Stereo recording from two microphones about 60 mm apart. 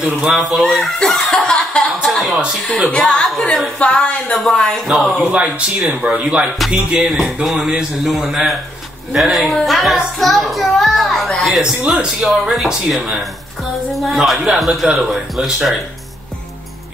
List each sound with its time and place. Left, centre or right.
0.0 s a child's voice: centre
0.9 s chuckle: centre
2.3 s speech: centre
2.9 s a woman's voice: centre
4.3 s a woman's voice: centre
4.8 s a child's voice: centre
5.2 s a child's voice: right; by 11.6 s centre
11.8 s a child's voice: centre